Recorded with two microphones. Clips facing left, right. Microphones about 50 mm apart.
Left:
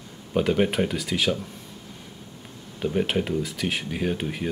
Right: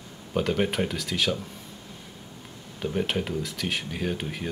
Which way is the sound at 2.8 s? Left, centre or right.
Centre.